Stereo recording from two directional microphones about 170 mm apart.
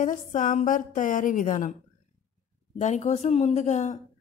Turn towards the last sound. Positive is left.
turn(degrees=45)  # may be behind; listen again after turning